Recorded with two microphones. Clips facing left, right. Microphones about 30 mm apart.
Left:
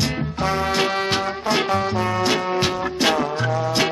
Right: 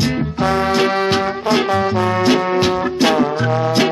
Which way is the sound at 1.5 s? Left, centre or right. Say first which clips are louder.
Right 4 dB; right.